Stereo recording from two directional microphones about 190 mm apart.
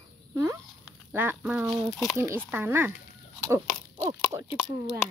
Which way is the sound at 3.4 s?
20° right (ahead or behind).